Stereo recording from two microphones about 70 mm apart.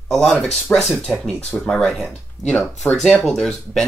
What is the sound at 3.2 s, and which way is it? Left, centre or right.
Speech, centre.